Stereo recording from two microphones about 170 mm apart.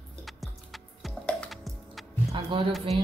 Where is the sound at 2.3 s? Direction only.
30° right (ahead or behind).